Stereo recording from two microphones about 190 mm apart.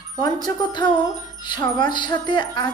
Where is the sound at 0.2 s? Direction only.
20° left (ahead or behind).